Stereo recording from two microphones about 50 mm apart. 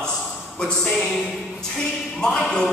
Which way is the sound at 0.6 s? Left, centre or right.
Centre.